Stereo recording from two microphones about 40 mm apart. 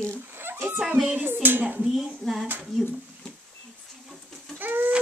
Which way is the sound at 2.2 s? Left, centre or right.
Centre.